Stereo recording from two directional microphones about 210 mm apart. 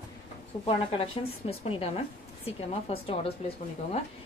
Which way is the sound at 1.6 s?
30° left (ahead or behind).